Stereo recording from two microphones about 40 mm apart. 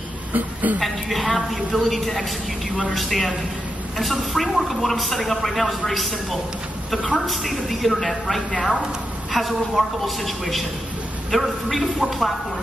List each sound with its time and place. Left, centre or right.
0.3 s a woman's voice: right
0.7 s a woman's voice: centre
7.2 s speech: centre